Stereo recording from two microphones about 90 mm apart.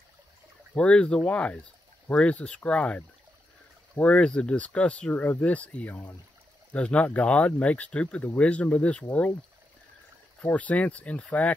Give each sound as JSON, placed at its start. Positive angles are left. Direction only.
{"t": 0.7, "sound": "speech", "side_deg": 15}
{"t": 10.5, "sound": "speech", "side_deg": 15}